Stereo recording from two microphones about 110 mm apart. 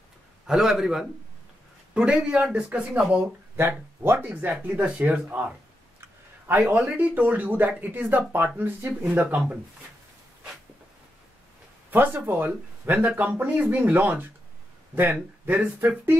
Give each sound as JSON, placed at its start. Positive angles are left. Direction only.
{"t": 0.5, "sound": "a man's voice", "side_deg": -5}
{"t": 3.5, "sound": "speech", "side_deg": -20}
{"t": 5.9, "sound": "a sound", "side_deg": -20}
{"t": 6.8, "sound": "speech", "side_deg": -15}
{"t": 11.9, "sound": "speech", "side_deg": -15}